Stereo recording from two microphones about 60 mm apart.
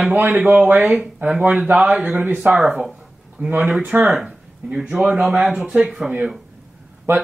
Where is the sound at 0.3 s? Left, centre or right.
Centre.